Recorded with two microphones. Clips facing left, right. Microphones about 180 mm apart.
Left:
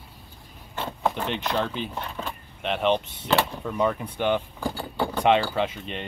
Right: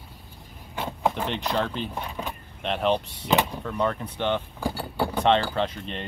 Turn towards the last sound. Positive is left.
turn(degrees=5)  # may be behind; listen again after turning